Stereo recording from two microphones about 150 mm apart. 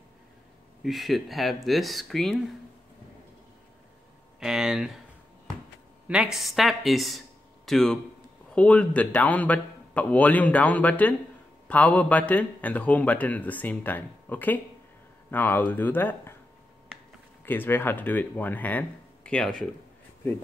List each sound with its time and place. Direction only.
0.8 s speech: centre (ahead or behind)
4.4 s speech: 5° right (ahead or behind)
6.0 s a man's voice: 5° right (ahead or behind); by 16.3 s 15° left (ahead or behind)
17.5 s a man's voice: 15° left (ahead or behind)